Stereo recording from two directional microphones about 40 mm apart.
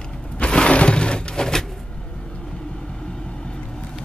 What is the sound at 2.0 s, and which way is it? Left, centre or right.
Vehicle, left.